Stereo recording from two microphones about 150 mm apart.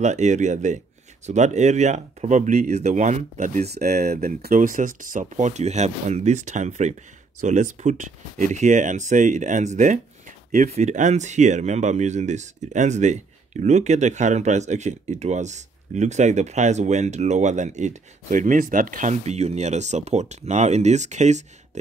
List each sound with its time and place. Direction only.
0.0 s speech: 50° right (ahead or behind)